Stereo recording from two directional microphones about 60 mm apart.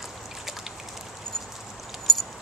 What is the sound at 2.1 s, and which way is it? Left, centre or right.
Keys jangling, centre.